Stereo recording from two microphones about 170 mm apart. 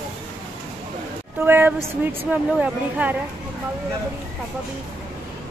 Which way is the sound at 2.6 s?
10° right (ahead or behind).